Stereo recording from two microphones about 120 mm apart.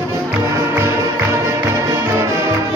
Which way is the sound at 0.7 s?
20° right (ahead or behind).